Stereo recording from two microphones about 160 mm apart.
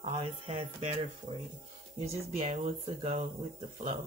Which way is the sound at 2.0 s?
45° right (ahead or behind).